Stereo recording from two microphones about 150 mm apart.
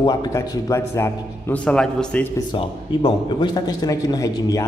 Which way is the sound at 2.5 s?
30° left (ahead or behind).